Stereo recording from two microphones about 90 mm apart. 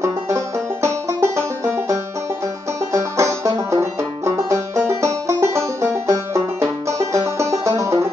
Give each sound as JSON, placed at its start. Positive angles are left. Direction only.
{"t": 0.8, "sound": "banjo", "side_deg": -30}